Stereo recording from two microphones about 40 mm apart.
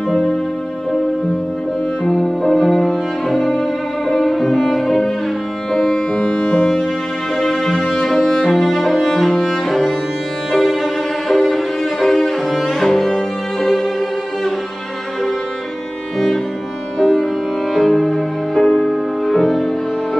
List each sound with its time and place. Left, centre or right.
2.0 s music: centre; by 6.7 s left
7.3 s music: centre
10.5 s violin: centre
17.0 s music: centre